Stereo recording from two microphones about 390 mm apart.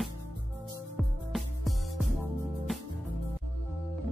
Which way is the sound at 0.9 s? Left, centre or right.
Centre.